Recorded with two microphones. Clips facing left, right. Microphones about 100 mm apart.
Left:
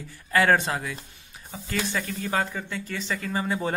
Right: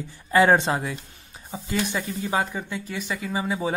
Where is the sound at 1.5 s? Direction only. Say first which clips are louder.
Right 2 dB; 15° right (ahead or behind).